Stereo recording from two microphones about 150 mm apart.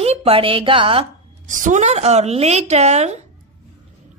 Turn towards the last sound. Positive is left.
turn(degrees=-45)  # may be behind; listen again after turning